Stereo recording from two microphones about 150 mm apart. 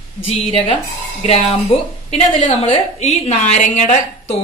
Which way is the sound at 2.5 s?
40° left (ahead or behind).